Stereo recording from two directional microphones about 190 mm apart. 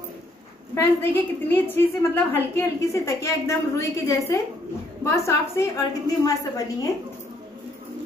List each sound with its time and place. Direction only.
0.7 s a woman's voice: 10° left (ahead or behind)